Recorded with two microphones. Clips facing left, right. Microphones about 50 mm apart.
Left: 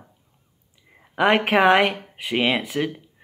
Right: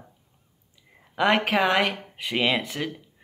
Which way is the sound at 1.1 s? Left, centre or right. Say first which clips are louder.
Left 3 dB; left.